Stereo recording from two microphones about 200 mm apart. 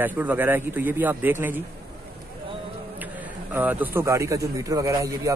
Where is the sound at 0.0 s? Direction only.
10° right (ahead or behind).